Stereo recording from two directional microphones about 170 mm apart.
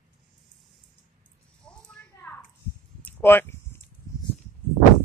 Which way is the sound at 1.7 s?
10° left (ahead or behind).